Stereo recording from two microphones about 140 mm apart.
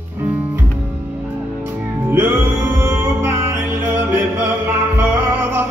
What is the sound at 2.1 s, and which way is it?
Music, 15° right (ahead or behind).